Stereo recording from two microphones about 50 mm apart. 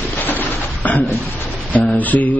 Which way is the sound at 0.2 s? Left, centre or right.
Left.